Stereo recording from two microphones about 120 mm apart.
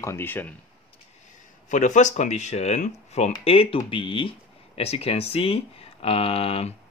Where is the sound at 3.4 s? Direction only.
50° left (ahead or behind).